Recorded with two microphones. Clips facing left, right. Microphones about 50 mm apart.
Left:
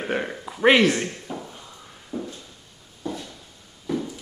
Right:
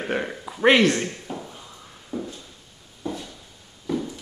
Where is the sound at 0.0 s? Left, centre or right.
Centre.